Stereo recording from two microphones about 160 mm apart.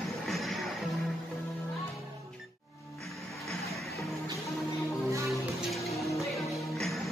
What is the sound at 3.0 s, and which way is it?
Music, centre (ahead or behind).